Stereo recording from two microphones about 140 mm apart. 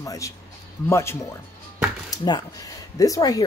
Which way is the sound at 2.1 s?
30° left (ahead or behind).